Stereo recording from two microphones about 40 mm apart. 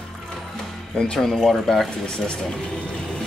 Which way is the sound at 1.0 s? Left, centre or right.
Centre.